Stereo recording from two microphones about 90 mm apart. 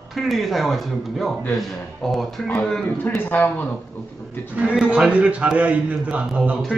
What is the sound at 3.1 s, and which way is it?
Speech, 20° left (ahead or behind).